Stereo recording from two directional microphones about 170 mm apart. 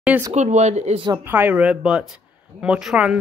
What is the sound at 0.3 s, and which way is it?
Speech, 45° right (ahead or behind).